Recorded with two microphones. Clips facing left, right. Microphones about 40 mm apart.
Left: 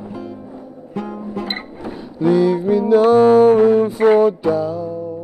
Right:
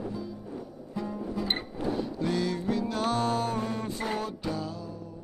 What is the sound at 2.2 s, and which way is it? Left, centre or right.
Music, centre.